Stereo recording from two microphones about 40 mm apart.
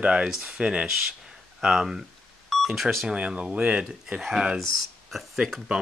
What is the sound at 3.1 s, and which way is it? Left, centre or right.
Speech, right.